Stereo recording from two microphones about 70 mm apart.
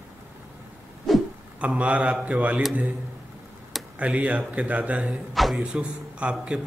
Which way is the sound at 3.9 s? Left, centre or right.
Centre.